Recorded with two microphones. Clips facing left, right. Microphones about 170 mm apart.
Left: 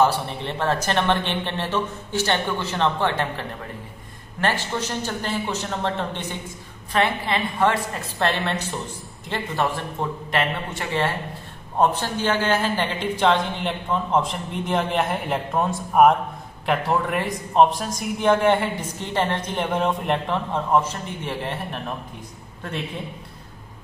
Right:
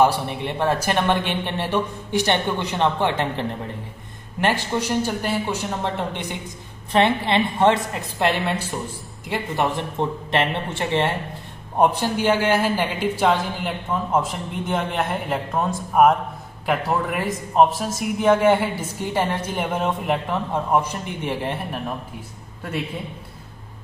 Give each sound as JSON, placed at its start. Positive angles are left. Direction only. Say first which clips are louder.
{"t": 0.0, "sound": "a man's voice", "louder": "right 2 dB", "side_deg": -15}
{"t": 6.9, "sound": "speech", "louder": "right 4 dB", "side_deg": -25}
{"t": 8.4, "sound": "a man's voice", "louder": "right 1 dB", "side_deg": -5}
{"t": 9.3, "sound": "speech", "louder": "right 2 dB", "side_deg": -20}
{"t": 11.8, "sound": "a man's voice", "louder": "right 2 dB", "side_deg": -15}